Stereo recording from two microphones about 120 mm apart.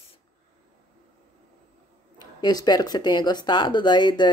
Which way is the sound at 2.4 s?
35° left (ahead or behind).